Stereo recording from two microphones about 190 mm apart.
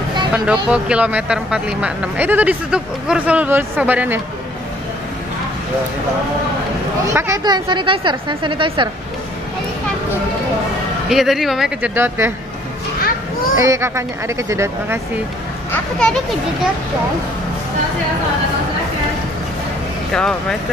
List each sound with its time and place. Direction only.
0.3 s speech: 5° right (ahead or behind)
7.1 s a woman's voice: 15° right (ahead or behind)
11.1 s speech: centre (ahead or behind)
13.6 s speech: 15° right (ahead or behind)
15.7 s speech: 5° left (ahead or behind)
20.1 s speech: 5° left (ahead or behind)